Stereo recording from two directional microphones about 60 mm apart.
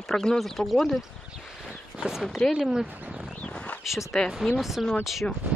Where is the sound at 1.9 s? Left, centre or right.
Centre.